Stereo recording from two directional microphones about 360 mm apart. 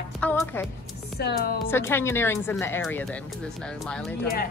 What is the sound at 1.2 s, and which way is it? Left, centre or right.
Speech, left.